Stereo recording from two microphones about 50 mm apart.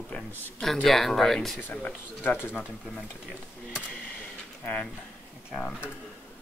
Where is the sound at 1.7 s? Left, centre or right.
Left.